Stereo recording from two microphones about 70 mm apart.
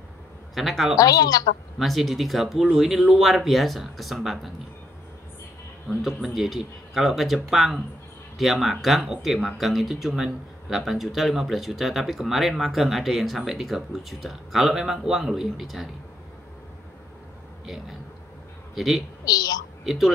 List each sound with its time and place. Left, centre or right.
0.6 s speech: centre
0.9 s a woman's voice: left
1.8 s speech: centre
5.9 s speech: centre
18.8 s speech: centre
19.2 s a woman's voice: left
19.8 s speech: centre